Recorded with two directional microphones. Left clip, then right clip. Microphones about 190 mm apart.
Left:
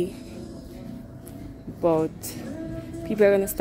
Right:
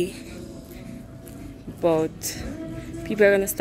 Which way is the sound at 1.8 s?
5° left (ahead or behind).